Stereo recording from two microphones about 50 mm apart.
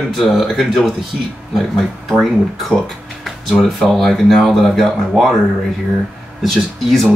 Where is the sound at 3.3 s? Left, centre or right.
Centre.